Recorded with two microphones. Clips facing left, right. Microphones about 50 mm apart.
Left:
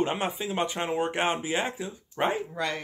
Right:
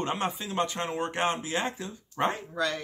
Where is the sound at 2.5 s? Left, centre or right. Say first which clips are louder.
Right 1 dB; left.